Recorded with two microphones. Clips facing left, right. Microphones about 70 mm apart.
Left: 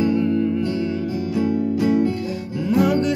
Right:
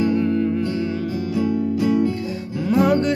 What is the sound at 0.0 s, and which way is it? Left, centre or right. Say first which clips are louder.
Music: even; right.